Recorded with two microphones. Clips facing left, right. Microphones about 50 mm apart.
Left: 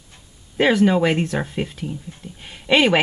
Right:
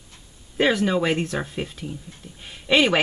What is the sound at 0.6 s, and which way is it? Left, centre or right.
Speech, centre.